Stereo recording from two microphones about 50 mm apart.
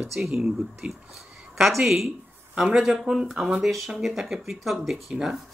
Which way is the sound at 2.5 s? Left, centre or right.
Right.